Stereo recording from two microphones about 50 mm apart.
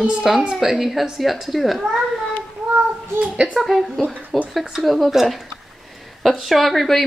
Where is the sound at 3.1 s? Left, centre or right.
Right.